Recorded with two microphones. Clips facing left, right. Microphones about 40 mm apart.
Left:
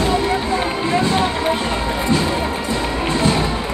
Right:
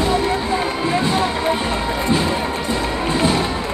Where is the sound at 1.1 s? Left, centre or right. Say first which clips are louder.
Left 1 dB; centre.